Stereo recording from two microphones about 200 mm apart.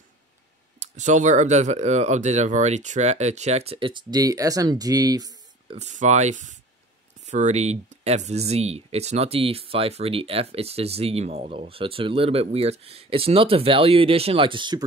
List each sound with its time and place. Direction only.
0.7 s speech: 35° right (ahead or behind); by 5.8 s 20° right (ahead or behind)
5.8 s speech: 35° right (ahead or behind)